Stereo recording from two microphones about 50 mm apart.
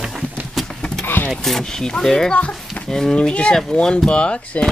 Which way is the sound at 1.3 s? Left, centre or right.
Centre.